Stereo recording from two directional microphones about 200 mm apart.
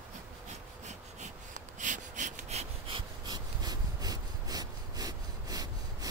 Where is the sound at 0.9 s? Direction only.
35° right (ahead or behind).